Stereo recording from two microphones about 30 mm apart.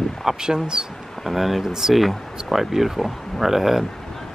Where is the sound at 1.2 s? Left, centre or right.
Centre.